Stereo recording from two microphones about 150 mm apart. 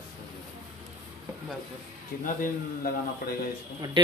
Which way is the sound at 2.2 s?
65° left (ahead or behind).